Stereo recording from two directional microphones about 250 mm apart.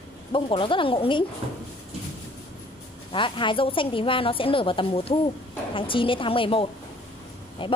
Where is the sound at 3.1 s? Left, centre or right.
Centre.